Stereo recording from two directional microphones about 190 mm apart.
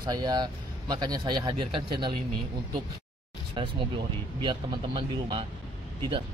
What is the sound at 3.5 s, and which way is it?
Speech, 30° right (ahead or behind).